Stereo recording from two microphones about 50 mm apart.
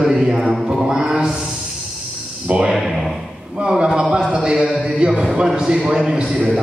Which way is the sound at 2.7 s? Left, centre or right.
Centre.